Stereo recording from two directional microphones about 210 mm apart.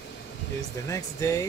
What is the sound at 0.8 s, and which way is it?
Speech, 15° left (ahead or behind).